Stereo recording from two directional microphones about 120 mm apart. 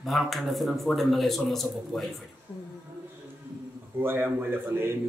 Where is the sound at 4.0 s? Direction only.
20° right (ahead or behind).